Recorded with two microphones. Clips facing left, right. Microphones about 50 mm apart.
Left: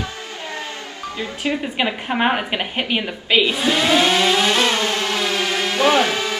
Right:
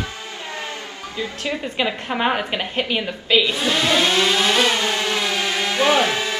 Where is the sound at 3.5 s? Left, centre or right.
Centre.